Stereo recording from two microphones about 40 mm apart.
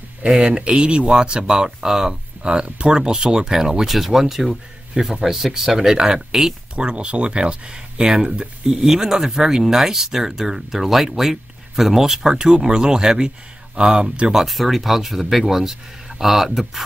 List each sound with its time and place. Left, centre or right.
0.3 s speech: right
3.9 s speech: centre
6.7 s speech: right
14.3 s speech: centre